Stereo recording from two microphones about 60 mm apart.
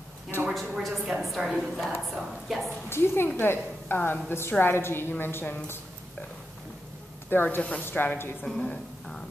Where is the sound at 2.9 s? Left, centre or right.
Left.